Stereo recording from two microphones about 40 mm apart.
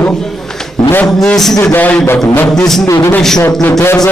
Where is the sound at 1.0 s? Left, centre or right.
Centre.